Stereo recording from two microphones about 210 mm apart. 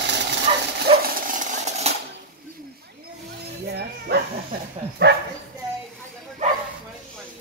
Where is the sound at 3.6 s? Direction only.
50° right (ahead or behind).